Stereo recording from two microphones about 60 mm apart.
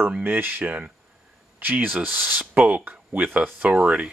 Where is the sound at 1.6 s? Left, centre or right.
Right.